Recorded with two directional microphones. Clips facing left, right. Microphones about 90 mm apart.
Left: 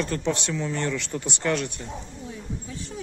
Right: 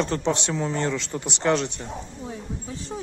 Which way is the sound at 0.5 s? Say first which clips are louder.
Right 2 dB; 35° right (ahead or behind).